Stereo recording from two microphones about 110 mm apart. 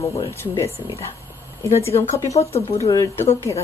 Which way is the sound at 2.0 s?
25° left (ahead or behind).